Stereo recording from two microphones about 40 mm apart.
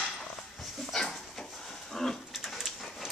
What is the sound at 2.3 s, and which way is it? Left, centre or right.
Dog, centre.